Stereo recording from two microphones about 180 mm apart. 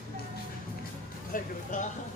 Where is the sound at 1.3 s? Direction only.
50° left (ahead or behind).